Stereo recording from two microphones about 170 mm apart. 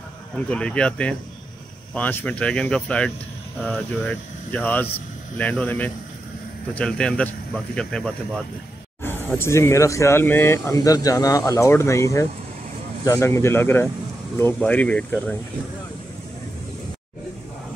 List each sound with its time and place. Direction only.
0.5 s speech: 5° left (ahead or behind)